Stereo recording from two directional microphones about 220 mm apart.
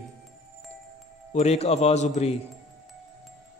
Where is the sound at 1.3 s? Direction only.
30° left (ahead or behind).